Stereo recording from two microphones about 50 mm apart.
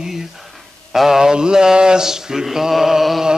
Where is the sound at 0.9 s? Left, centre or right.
Centre.